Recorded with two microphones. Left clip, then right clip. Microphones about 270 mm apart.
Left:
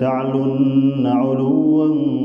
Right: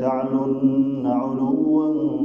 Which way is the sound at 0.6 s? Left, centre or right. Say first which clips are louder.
Left 4 dB; left.